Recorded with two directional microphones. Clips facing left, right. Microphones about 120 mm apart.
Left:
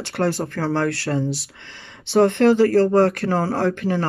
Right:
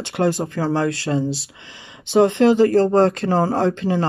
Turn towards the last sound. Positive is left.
turn(degrees=-20)  # may be behind; listen again after turning